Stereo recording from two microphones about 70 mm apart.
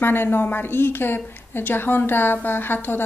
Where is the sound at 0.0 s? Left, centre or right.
Left.